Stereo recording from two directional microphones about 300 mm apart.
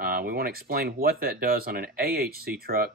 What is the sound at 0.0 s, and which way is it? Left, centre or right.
Speech, right.